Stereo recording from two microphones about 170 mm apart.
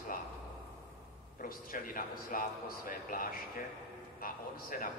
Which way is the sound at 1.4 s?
55° left (ahead or behind).